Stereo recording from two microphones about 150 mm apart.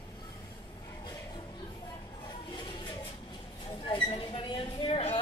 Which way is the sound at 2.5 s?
30° left (ahead or behind).